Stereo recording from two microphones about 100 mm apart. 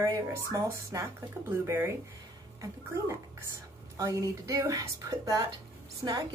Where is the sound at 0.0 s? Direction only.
35° right (ahead or behind).